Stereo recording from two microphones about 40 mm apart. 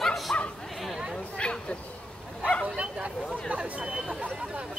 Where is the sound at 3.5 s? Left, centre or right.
Right.